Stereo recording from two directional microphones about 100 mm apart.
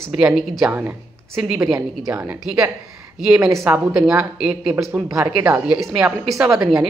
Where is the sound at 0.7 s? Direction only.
20° right (ahead or behind).